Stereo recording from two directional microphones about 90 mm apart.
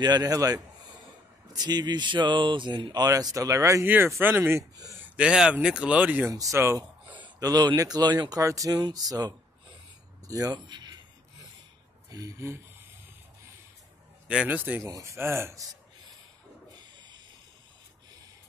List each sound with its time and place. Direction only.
0.0 s speech: 50° right (ahead or behind)
3.8 s speech: 20° right (ahead or behind)
5.1 s speech: 10° right (ahead or behind)
6.3 s speech: 35° right (ahead or behind)
7.3 s speech: 45° right (ahead or behind)
10.5 s speech: 55° right (ahead or behind)
12.1 s speech: 40° right (ahead or behind)
14.2 s speech: 10° right (ahead or behind)
14.8 s speech: 35° right (ahead or behind)